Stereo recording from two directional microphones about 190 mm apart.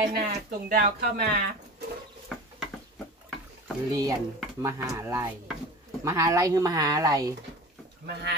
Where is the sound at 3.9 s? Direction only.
20° right (ahead or behind).